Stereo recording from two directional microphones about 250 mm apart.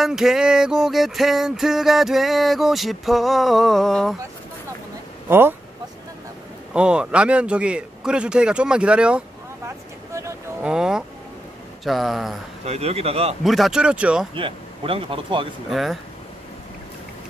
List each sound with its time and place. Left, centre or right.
0.0 s music: centre
5.3 s speech: centre
6.7 s music: centre
10.1 s a sound: centre
11.8 s music: centre
12.6 s speech: right
13.4 s music: centre
14.3 s speech: right
15.7 s music: centre